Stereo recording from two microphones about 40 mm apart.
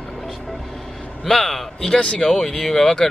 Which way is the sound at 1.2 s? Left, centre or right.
Centre.